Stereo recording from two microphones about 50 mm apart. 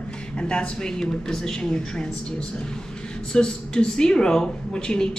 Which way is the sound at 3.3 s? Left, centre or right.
Centre.